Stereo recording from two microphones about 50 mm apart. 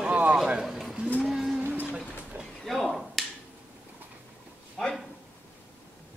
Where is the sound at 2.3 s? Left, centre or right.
Right.